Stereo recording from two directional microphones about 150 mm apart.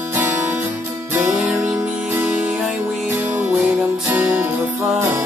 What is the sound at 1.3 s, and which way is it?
Music, centre (ahead or behind).